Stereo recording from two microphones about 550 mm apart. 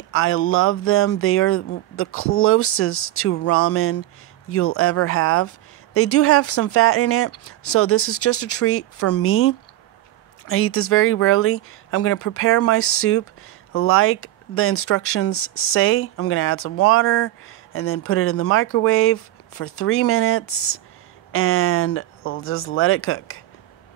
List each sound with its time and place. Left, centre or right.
0.1 s speech: left